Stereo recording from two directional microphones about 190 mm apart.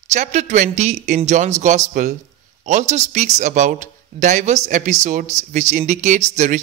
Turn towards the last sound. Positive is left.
turn(degrees=-40)  # may be behind; listen again after turning